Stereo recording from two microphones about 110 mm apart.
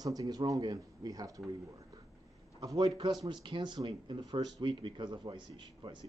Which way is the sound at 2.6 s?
35° right (ahead or behind).